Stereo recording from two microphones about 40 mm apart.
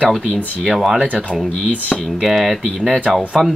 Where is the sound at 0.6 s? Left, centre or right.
Centre.